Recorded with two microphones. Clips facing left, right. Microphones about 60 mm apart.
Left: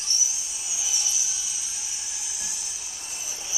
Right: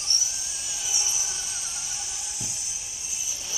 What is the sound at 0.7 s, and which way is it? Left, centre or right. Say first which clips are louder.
Vehicle: left 1 dB; centre.